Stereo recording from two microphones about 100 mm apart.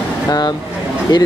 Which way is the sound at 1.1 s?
45° left (ahead or behind).